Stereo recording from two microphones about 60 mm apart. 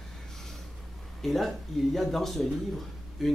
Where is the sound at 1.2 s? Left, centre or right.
Centre.